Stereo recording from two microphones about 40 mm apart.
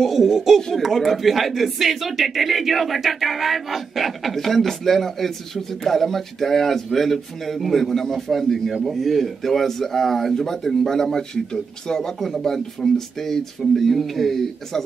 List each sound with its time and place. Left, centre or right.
0.0 s speech: centre
0.6 s speech: centre
0.8 s speech: centre